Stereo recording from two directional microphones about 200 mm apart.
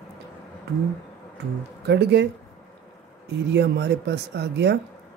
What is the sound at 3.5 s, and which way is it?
Speech, 55° right (ahead or behind).